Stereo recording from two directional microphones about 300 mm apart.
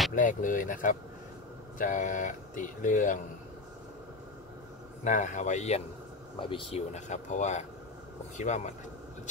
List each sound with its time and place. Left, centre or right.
0.1 s speech: left
5.0 s speech: left